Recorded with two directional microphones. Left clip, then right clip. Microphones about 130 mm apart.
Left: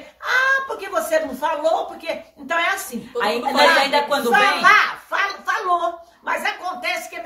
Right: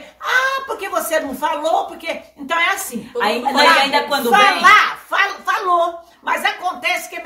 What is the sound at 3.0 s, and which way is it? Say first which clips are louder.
A woman's voice: right 3 dB; centre (ahead or behind).